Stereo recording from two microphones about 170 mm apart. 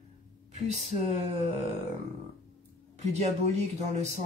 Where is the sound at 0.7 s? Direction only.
40° right (ahead or behind).